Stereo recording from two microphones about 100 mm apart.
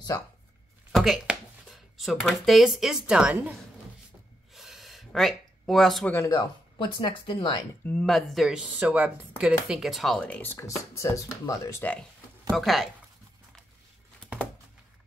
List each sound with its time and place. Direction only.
0.9 s speech: centre (ahead or behind)
4.6 s a sound: centre (ahead or behind)
6.1 s speech: 35° left (ahead or behind)
6.8 s speech: 55° left (ahead or behind)
7.8 s speech: 10° left (ahead or behind)
10.3 s speech: 20° left (ahead or behind)
11.8 s speech: 15° left (ahead or behind)
12.4 s speech: centre (ahead or behind)